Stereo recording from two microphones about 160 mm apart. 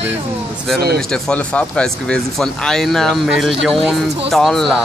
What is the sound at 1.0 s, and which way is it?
Speech, 5° left (ahead or behind).